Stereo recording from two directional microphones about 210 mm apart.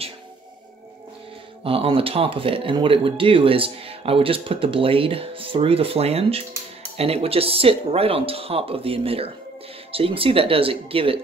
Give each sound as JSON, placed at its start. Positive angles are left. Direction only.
{"t": 1.6, "sound": "speech", "side_deg": -25}